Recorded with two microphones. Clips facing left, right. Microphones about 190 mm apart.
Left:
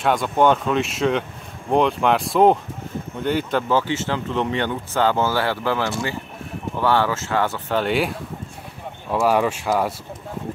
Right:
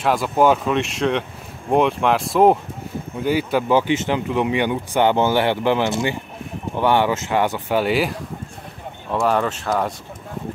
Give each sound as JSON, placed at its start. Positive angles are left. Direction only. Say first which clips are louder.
{"t": 0.0, "sound": "speech", "louder": "right 1 dB", "side_deg": -5}